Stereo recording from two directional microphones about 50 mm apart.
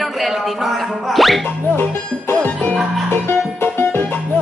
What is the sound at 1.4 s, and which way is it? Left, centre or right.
Music, left.